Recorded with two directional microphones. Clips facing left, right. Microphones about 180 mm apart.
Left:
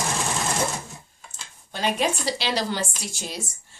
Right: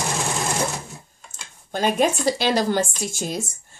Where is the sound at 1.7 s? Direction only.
45° right (ahead or behind).